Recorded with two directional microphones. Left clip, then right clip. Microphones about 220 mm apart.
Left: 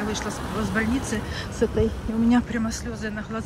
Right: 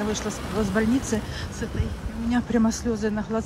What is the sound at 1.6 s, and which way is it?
Speech, centre (ahead or behind).